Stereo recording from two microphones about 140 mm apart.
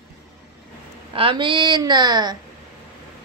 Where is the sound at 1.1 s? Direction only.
40° right (ahead or behind).